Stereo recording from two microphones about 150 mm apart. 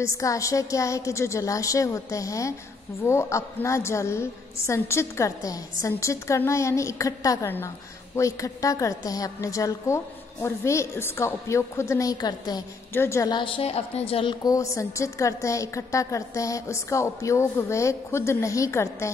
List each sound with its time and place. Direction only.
0.2 s a woman's voice: 20° left (ahead or behind)
12.9 s a woman's voice: 15° left (ahead or behind)
13.3 s a woman's voice: 35° left (ahead or behind)
14.4 s a woman's voice: 20° left (ahead or behind)